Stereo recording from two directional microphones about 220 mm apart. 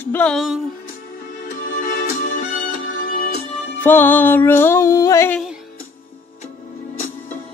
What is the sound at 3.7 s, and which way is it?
Music, 10° left (ahead or behind).